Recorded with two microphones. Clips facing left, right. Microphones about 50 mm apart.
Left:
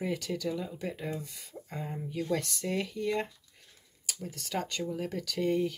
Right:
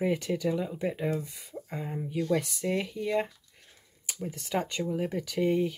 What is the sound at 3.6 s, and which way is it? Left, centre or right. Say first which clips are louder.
Speech: even; right.